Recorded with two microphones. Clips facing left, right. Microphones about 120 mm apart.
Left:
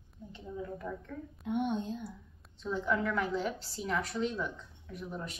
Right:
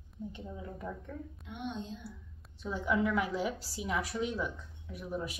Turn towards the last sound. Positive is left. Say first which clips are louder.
# right 3 dB
turn(degrees=-5)  # may be behind; listen again after turning